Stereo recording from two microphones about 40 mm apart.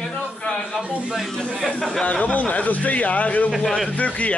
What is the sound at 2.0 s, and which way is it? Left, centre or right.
Speech, left.